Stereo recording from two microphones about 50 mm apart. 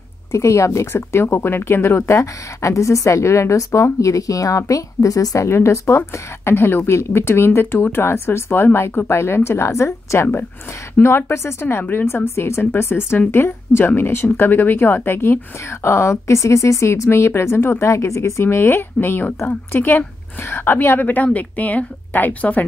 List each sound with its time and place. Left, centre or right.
0.3 s speech: left
2.1 s a woman's voice: left
11.0 s speech: left
12.4 s speech: left
15.6 s a woman's voice: left